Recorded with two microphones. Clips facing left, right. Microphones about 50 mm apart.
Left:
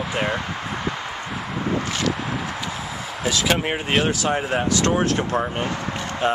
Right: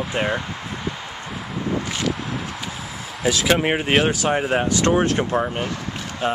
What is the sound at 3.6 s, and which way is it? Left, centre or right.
Speech, centre.